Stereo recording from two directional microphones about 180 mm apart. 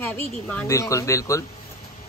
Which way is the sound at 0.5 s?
10° left (ahead or behind).